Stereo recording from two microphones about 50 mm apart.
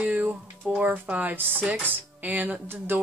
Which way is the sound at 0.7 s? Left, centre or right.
Right.